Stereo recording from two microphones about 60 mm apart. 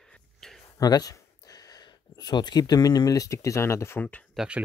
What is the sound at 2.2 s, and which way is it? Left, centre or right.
Speech, left.